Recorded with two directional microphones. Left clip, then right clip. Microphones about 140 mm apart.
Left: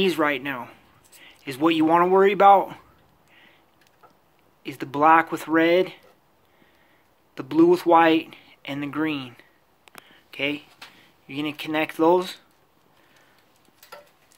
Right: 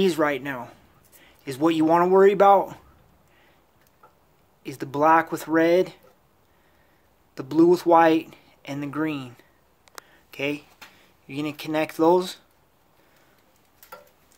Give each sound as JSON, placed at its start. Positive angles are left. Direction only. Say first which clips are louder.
{"t": 0.0, "sound": "speech", "louder": "even", "side_deg": -15}
{"t": 4.6, "sound": "speech", "louder": "left 2 dB", "side_deg": -5}
{"t": 7.3, "sound": "speech", "louder": "even", "side_deg": -10}